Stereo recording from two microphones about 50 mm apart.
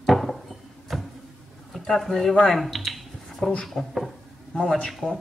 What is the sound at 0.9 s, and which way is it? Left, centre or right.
Vehicle, centre.